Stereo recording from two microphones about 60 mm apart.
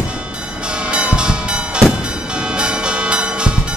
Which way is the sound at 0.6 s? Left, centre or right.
Centre.